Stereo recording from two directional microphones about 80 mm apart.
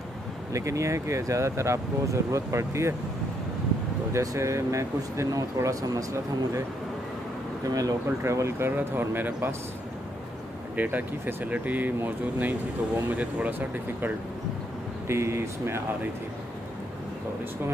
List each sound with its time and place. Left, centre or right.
0.5 s speech: right
4.1 s speech: right
7.6 s speech: right
8.2 s speech: right
10.8 s speech: right